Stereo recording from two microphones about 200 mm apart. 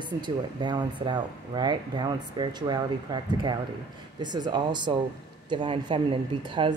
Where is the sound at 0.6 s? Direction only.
20° right (ahead or behind).